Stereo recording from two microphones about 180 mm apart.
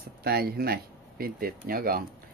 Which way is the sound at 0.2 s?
60° right (ahead or behind).